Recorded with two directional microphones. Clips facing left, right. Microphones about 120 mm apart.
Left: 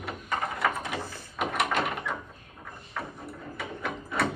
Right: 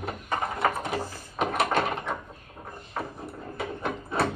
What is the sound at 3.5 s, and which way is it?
Mechanisms, 30° right (ahead or behind).